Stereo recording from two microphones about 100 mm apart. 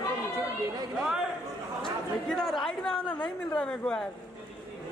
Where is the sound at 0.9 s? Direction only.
5° right (ahead or behind).